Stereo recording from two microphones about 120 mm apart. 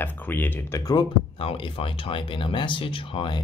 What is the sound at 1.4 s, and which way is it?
Speech, 50° left (ahead or behind).